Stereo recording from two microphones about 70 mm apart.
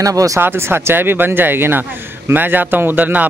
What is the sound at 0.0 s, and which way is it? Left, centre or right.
Speech, right.